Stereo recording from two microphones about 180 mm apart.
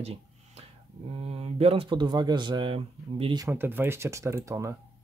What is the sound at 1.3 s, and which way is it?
Speech, 35° right (ahead or behind).